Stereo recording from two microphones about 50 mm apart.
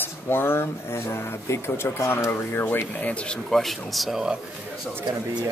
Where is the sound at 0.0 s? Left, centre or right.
Left.